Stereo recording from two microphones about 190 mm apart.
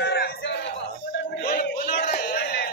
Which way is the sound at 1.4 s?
50° left (ahead or behind).